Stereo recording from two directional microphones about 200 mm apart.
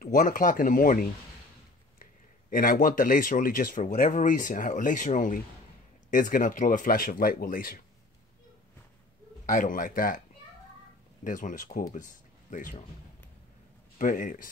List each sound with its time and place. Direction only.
0.0 s speech: 40° left (ahead or behind)
2.5 s speech: 45° left (ahead or behind)
9.5 s speech: 40° left (ahead or behind)
11.2 s speech: 40° left (ahead or behind)
13.9 s speech: 40° left (ahead or behind)